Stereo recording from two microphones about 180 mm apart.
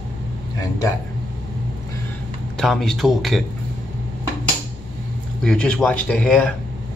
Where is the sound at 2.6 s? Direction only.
Centre (ahead or behind).